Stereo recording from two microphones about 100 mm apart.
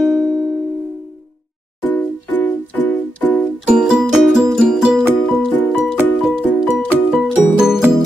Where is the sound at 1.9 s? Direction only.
15° left (ahead or behind).